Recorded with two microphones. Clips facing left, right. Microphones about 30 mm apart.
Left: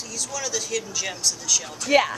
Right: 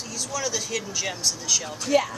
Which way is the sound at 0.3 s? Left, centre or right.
Centre.